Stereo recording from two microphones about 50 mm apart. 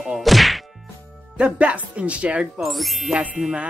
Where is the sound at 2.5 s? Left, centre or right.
Centre.